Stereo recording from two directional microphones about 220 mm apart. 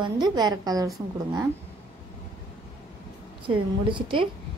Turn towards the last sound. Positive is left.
turn(degrees=-25)  # may be behind; listen again after turning